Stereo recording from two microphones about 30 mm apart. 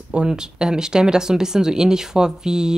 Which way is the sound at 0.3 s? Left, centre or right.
Right.